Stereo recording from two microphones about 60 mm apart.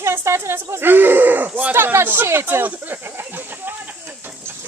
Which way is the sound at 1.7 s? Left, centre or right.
Right.